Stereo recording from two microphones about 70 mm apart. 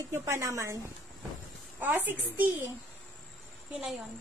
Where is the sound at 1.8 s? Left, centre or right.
Right.